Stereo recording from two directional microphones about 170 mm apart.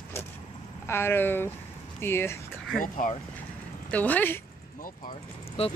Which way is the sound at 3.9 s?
10° left (ahead or behind).